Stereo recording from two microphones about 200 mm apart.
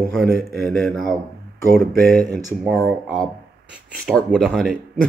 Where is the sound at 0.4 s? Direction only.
50° right (ahead or behind).